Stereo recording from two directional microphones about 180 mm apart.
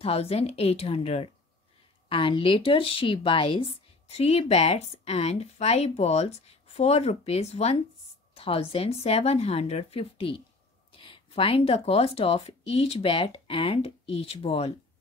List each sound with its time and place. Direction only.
0.0 s speech: 35° left (ahead or behind)